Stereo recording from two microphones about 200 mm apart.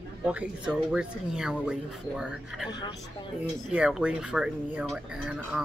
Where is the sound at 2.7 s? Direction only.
20° left (ahead or behind).